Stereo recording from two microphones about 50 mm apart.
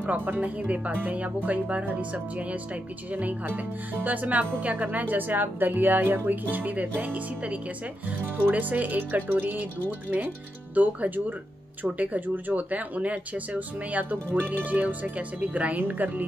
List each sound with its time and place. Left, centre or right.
0.0 s speech: right